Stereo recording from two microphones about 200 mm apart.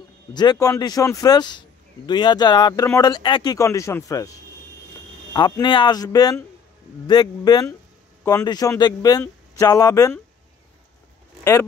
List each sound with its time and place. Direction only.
0.3 s speech: 20° left (ahead or behind)
5.3 s speech: 25° left (ahead or behind)
8.2 s speech: 10° left (ahead or behind)
8.5 s speech: 20° left (ahead or behind)